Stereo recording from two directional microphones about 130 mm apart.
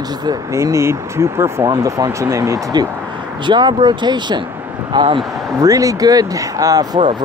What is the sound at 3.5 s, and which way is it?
Speech, 35° right (ahead or behind).